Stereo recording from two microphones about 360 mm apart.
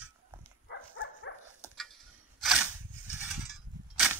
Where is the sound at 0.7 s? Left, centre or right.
Left.